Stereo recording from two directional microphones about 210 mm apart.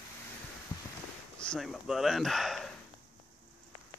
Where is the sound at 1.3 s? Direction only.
5° left (ahead or behind).